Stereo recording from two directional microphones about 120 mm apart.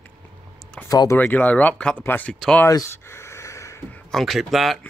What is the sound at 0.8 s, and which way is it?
Speech, 30° left (ahead or behind).